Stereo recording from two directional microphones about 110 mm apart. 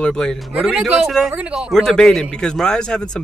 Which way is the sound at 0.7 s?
10° right (ahead or behind).